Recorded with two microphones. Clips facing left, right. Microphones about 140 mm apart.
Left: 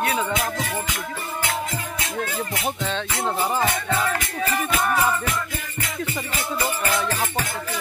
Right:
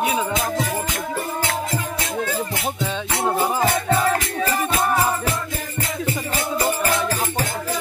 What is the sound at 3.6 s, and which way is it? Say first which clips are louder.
Music: right 4 dB; 40° right (ahead or behind).